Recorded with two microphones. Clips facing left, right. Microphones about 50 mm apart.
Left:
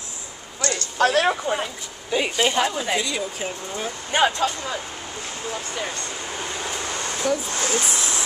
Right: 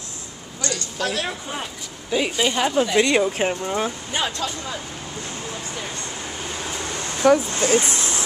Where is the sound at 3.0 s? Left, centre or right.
Right.